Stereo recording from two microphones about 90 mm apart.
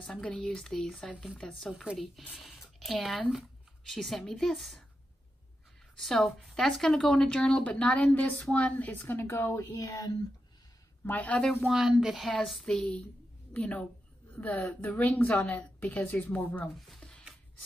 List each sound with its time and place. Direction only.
0.0 s speech: 10° left (ahead or behind)
5.9 s a woman's voice: 5° left (ahead or behind); by 9.7 s 30° left (ahead or behind)
9.8 s speech: 40° left (ahead or behind)
11.1 s a woman's voice: 15° left (ahead or behind)
11.6 s a woman's voice: 5° right (ahead or behind); by 16.7 s 15° left (ahead or behind)
17.0 s music: 10° left (ahead or behind)